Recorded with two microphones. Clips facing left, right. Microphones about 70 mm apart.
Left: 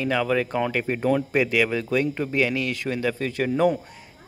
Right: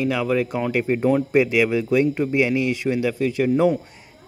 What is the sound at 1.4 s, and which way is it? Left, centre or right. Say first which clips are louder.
A man's voice: right 4 dB; right.